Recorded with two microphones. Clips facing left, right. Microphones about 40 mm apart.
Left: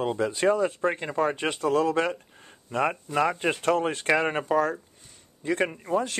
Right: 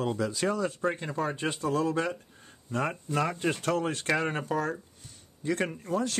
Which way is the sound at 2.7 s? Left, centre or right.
Left.